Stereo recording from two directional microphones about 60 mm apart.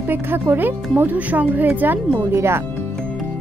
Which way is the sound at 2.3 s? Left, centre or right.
Right.